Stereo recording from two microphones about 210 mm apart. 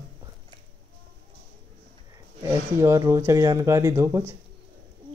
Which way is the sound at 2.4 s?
15° right (ahead or behind).